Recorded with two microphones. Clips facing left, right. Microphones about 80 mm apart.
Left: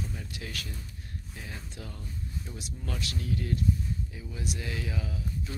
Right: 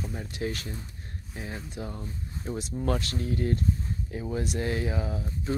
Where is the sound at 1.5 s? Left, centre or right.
Centre.